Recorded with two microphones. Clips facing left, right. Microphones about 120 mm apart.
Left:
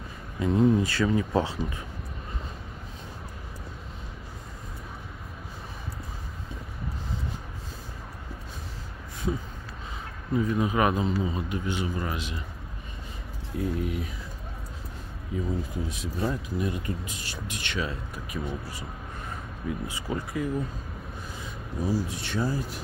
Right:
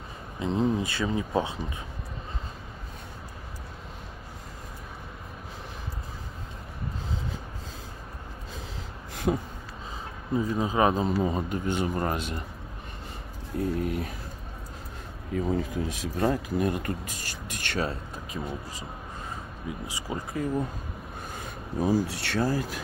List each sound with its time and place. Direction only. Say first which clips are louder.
0.4 s speech: left 4 dB; 20° right (ahead or behind)
9.1 s a sound: right 4 dB; 75° right (ahead or behind)
10.3 s speech: left 1 dB; 25° right (ahead or behind)
11.2 s speech: right 2 dB; 45° right (ahead or behind)
13.6 s speech: right 1 dB; 45° right (ahead or behind)
15.3 s speech: right 3 dB; 80° right; by 17.9 s 45° right (ahead or behind)
18.3 s speech: left 1 dB; 20° right (ahead or behind)
19.6 s speech: left 3 dB; 15° right (ahead or behind)
21.3 s a sound: right 4 dB; 55° right (ahead or behind)
22.0 s speech: right 2 dB; 80° right